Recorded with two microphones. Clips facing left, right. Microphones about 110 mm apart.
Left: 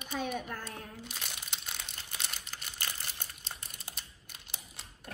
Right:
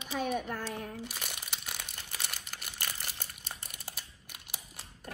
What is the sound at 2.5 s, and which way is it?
Crumpling, 55° right (ahead or behind).